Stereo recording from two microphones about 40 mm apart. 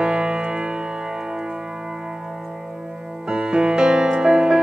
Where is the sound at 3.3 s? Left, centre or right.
Right.